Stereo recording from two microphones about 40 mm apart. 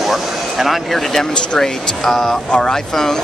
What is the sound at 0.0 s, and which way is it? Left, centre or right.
Vehicle, centre.